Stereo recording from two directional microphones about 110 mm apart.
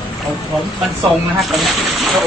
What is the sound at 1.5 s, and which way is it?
Speech, centre (ahead or behind).